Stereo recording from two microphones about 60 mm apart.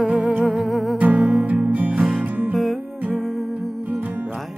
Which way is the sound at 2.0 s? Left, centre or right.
Centre.